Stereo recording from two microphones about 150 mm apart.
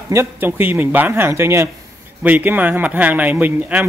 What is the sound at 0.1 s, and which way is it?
Speech, 15° right (ahead or behind).